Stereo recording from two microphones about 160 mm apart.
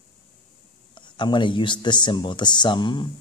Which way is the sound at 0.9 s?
30° left (ahead or behind).